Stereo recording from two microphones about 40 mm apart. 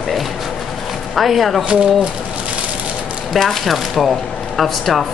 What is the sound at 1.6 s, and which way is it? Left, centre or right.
Speech, right.